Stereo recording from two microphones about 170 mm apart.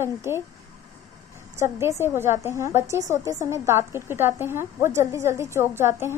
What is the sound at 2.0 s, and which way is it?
A woman's voice, 15° right (ahead or behind).